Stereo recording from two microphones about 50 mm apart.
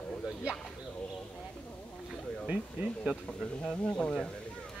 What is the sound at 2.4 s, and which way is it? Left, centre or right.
Speech, centre.